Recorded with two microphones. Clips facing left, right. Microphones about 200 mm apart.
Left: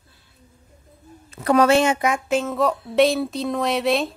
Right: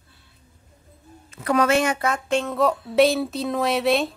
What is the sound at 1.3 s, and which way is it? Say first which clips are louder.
Speech: left 4 dB; 35° left (ahead or behind).